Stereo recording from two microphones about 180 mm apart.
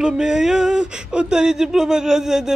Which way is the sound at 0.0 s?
5° right (ahead or behind).